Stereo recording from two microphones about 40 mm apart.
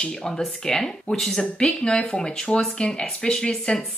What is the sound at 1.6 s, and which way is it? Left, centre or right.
Speech, left.